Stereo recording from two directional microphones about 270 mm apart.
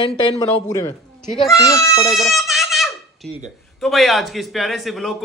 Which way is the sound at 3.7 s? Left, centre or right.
Centre.